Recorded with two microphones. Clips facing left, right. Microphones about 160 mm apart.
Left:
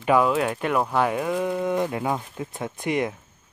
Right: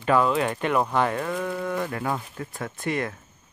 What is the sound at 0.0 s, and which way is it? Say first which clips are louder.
Speech: left 1 dB; 10° left (ahead or behind).